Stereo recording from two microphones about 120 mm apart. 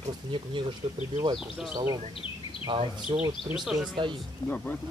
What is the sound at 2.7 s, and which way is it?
Speech, 40° right (ahead or behind).